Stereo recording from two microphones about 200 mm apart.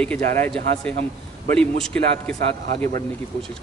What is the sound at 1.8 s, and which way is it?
A man's voice, 5° left (ahead or behind).